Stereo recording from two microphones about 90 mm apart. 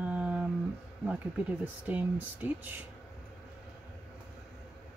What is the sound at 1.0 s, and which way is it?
Speech, 15° right (ahead or behind).